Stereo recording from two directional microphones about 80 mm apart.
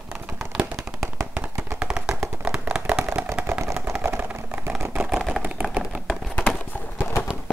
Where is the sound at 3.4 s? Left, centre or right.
Right.